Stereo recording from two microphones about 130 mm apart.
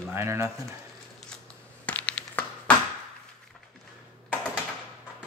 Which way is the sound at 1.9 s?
10° left (ahead or behind).